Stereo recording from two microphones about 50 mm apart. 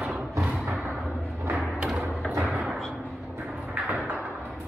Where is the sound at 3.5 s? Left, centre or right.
Right.